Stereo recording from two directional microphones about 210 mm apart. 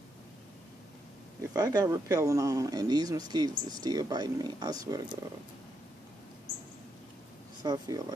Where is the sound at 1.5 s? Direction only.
15° right (ahead or behind).